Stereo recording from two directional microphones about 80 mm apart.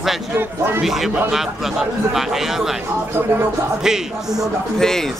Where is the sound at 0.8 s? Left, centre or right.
Centre.